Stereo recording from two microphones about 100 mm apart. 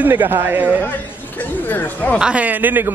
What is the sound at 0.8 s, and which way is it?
Speech, 15° left (ahead or behind).